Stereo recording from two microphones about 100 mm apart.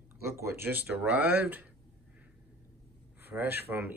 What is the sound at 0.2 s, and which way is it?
Speech, 25° right (ahead or behind).